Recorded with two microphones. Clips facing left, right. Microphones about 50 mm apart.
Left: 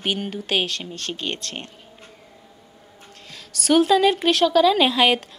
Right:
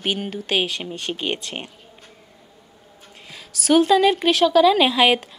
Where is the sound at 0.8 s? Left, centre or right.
Centre.